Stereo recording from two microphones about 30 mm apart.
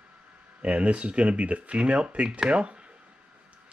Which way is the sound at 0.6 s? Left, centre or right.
Right.